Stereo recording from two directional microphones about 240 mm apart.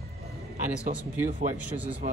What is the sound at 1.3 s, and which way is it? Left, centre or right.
Speech, right.